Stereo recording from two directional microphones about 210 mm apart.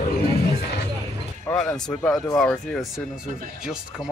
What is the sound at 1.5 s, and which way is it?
Speech, centre (ahead or behind).